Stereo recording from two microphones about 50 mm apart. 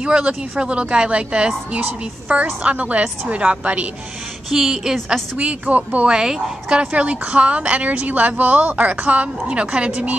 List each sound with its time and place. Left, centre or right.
0.0 s a woman's voice: centre
4.5 s a woman's voice: centre
5.4 s a woman's voice: right
6.1 s a woman's voice: centre
6.8 s a woman's voice: right